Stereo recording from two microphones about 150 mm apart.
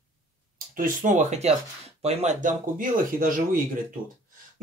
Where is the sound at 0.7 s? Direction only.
60° right (ahead or behind).